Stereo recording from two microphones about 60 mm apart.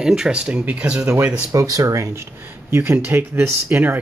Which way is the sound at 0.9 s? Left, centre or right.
Right.